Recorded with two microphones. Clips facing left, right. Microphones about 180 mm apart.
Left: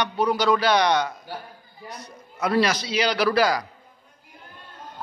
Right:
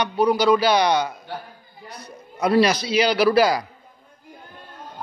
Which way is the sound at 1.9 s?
35° right (ahead or behind).